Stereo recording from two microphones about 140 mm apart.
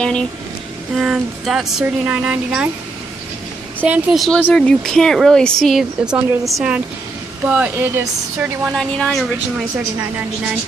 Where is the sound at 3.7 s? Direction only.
10° right (ahead or behind).